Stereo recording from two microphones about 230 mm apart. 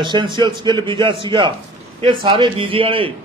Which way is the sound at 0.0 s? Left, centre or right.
Centre.